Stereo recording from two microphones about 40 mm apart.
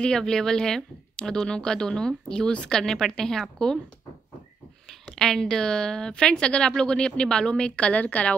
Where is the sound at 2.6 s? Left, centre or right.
Centre.